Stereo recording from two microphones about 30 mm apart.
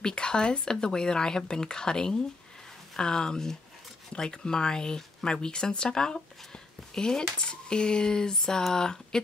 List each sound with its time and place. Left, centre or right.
0.0 s speech: left